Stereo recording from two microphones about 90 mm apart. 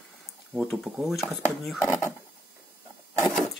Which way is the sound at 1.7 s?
30° left (ahead or behind).